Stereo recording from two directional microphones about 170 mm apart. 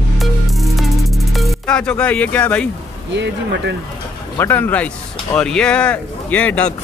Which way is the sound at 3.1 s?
90° right.